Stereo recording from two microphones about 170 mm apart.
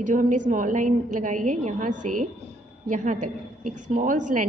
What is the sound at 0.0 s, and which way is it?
A woman's voice, 50° right (ahead or behind).